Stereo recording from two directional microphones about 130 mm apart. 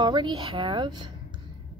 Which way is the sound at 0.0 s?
35° right (ahead or behind).